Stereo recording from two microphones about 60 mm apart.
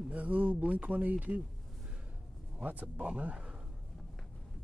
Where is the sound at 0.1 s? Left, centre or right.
Right.